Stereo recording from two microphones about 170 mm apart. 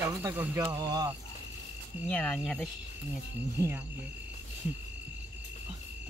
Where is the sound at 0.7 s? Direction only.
20° right (ahead or behind).